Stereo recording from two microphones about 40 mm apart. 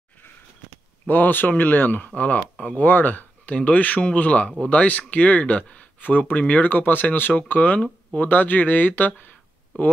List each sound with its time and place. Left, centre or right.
1.0 s speech: left
5.9 s speech: left
7.3 s speech: left